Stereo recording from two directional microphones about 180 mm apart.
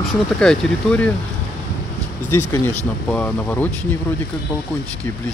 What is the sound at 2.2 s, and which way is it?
Speech, 15° left (ahead or behind).